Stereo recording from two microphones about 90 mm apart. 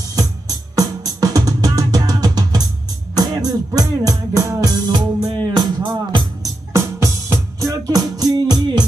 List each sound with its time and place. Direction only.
0.0 s drum: 40° right (ahead or behind)
3.2 s music: 45° right (ahead or behind)
6.7 s music: 30° right (ahead or behind); by 8.8 s 50° right (ahead or behind)